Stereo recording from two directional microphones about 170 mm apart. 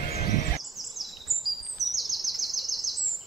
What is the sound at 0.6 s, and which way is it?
Bird vocalization, centre (ahead or behind).